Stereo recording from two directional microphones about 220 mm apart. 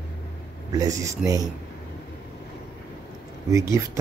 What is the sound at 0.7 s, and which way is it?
Speech, 15° right (ahead or behind).